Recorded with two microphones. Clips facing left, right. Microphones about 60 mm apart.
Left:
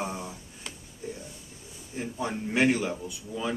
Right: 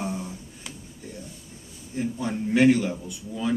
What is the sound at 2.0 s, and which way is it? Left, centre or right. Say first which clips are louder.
A man's voice: right 4 dB; centre.